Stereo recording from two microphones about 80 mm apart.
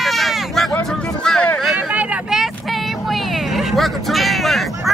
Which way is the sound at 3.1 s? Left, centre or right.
Centre.